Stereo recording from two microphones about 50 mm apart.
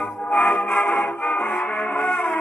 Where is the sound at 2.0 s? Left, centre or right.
Left.